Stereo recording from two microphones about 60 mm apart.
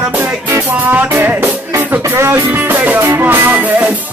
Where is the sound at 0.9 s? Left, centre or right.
Right.